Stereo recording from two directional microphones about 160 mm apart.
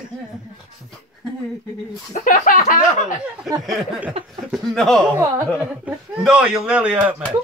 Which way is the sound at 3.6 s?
Centre (ahead or behind).